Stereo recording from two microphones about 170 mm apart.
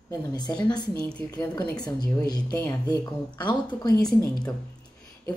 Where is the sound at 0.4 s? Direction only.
25° left (ahead or behind).